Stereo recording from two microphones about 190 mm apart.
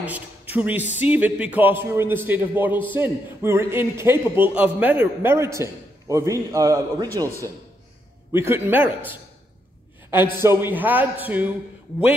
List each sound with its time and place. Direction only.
0.0 s a man's voice: 10° right (ahead or behind)
10.1 s a man's voice: 10° right (ahead or behind)